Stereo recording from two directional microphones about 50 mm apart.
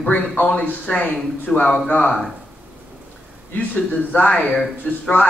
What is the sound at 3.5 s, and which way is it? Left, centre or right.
Speech, left.